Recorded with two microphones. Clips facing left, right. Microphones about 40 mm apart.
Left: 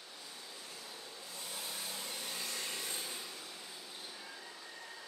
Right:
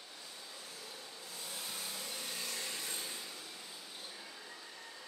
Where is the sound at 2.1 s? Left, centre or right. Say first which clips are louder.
Even; centre.